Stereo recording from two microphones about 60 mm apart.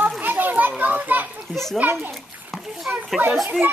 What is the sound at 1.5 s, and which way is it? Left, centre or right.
Speech, centre.